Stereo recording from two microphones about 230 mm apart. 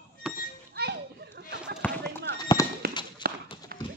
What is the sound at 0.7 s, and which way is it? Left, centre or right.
Children playing, right.